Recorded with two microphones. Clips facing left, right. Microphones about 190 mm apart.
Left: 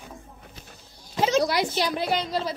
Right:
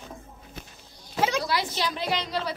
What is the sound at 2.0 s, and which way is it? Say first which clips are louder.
Speech: left 3 dB; 50° left (ahead or behind).